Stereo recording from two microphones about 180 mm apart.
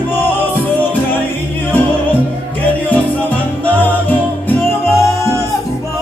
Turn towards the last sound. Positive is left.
turn(degrees=15)  # may be behind; listen again after turning